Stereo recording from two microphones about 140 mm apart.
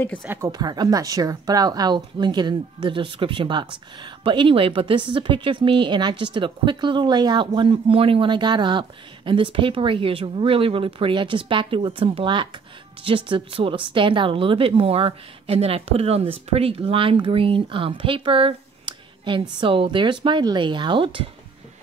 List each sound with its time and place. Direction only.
0.5 s speech: 30° right (ahead or behind)